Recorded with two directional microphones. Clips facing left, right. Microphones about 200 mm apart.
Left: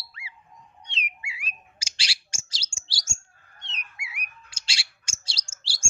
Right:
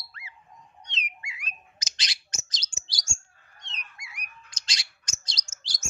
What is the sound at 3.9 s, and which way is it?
Bird, 5° left (ahead or behind).